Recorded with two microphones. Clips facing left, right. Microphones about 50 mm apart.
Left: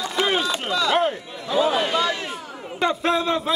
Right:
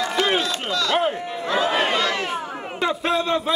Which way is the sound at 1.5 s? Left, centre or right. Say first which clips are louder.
Even; right.